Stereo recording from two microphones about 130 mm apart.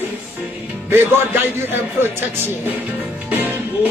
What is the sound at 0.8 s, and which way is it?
Speech, 15° right (ahead or behind).